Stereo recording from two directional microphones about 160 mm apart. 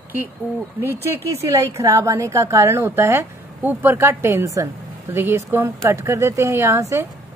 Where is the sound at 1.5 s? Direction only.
20° right (ahead or behind).